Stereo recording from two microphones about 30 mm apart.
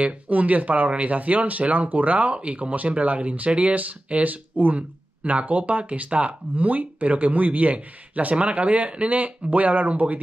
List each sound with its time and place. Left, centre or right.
0.0 s speech: right
2.3 s speech: right
4.2 s speech: right
6.5 s speech: right
8.4 s speech: right
9.1 s speech: right